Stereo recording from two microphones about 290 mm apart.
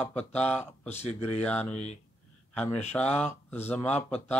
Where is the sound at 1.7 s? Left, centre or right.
Left.